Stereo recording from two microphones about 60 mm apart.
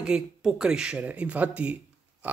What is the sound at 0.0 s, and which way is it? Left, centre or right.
Speech, centre.